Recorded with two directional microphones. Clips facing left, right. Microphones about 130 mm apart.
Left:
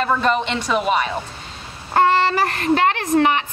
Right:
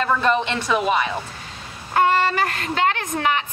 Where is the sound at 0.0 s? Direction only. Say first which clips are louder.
Left 1 dB; 10° left (ahead or behind).